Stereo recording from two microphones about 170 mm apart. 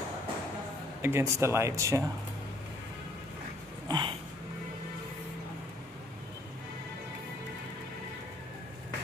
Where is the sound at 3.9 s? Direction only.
30° right (ahead or behind).